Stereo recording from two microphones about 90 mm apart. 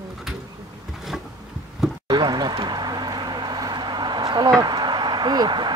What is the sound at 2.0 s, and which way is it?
Speech, 50° right (ahead or behind).